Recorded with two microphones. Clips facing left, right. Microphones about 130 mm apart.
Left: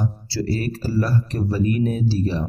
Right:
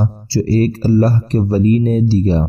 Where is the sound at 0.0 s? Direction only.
30° right (ahead or behind).